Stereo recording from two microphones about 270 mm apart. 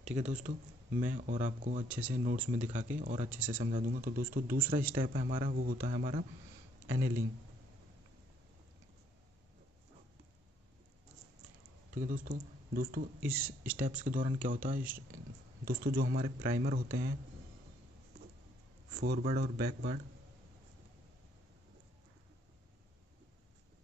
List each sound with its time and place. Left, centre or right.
0.1 s speech: right
1.9 s speech: centre
2.6 s speech: right
11.9 s speech: right
13.2 s speech: centre
13.8 s speech: right
18.9 s speech: right